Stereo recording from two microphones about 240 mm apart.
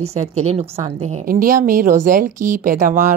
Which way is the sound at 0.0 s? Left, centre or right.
Right.